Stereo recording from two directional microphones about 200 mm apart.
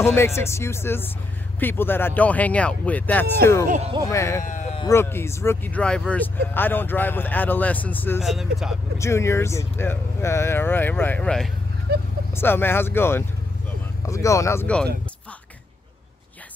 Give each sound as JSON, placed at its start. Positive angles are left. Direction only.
{"t": 0.0, "sound": "speech", "side_deg": 10}
{"t": 3.6, "sound": "speech", "side_deg": -40}
{"t": 4.1, "sound": "speech", "side_deg": 15}
{"t": 4.5, "sound": "sheep", "side_deg": 40}
{"t": 4.7, "sound": "speech", "side_deg": 15}
{"t": 8.9, "sound": "speech", "side_deg": 15}
{"t": 11.9, "sound": "vehicle", "side_deg": -50}
{"t": 12.4, "sound": "speech", "side_deg": 10}